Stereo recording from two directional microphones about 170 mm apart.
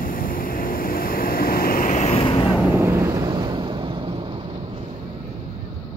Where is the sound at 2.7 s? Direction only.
15° right (ahead or behind); by 3.8 s 30° right (ahead or behind).